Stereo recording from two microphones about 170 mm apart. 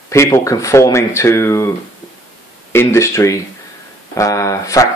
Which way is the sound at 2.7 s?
15° left (ahead or behind).